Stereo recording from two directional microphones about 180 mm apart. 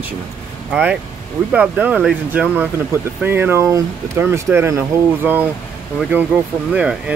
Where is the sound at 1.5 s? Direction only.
5° right (ahead or behind).